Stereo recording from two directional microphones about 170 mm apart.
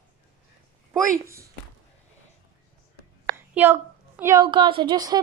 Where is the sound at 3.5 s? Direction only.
10° right (ahead or behind).